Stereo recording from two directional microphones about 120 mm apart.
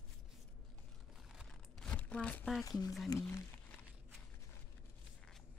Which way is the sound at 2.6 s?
30° left (ahead or behind).